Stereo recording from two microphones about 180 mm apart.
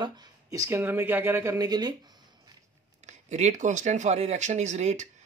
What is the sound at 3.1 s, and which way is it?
Speech, 40° right (ahead or behind).